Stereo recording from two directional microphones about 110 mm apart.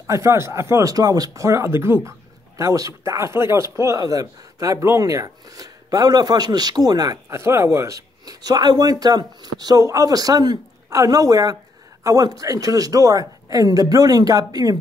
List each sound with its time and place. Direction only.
0.0 s speech: 25° right (ahead or behind)